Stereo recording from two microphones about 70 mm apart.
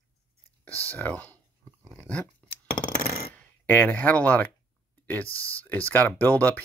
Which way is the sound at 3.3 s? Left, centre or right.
Left.